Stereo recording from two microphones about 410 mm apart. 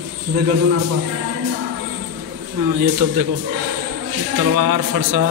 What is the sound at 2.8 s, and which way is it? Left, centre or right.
Speech, right.